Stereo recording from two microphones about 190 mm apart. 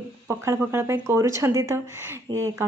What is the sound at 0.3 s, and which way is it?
Speech, 15° right (ahead or behind).